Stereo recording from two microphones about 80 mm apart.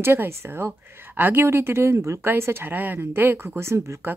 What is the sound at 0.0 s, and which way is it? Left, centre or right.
A woman's voice, right.